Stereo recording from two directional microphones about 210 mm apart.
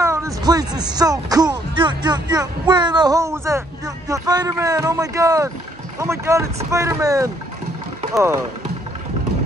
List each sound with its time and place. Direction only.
0.0 s speech: 15° right (ahead or behind)